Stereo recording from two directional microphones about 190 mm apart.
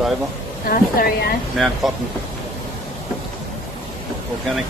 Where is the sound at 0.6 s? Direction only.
50° left (ahead or behind).